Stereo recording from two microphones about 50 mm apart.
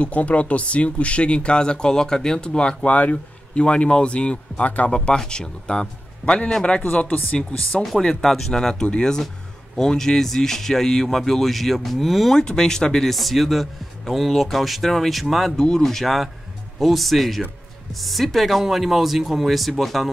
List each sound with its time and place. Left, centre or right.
0.0 s speech: left
4.9 s speech: centre
7.7 s speech: centre
12.4 s speech: centre
15.5 s speech: centre